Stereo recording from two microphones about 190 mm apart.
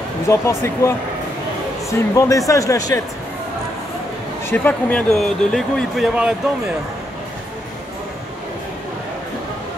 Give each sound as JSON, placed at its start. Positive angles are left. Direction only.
{"t": 0.3, "sound": "speech", "side_deg": 15}
{"t": 4.5, "sound": "speech", "side_deg": 10}